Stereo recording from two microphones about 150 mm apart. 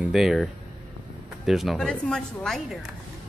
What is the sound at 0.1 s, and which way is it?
Speech, centre (ahead or behind).